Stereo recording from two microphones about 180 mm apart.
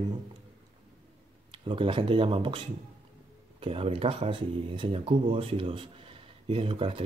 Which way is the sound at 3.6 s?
35° right (ahead or behind).